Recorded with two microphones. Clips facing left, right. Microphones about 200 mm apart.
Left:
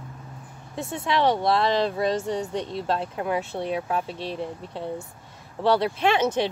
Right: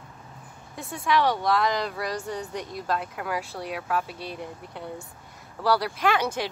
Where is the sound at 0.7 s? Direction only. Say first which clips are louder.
Even; 25° left (ahead or behind).